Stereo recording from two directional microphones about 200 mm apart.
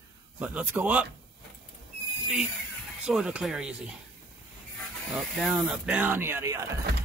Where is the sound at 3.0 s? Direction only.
5° right (ahead or behind).